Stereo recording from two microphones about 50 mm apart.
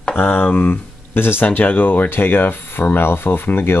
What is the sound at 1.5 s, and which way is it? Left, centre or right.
Speech, left.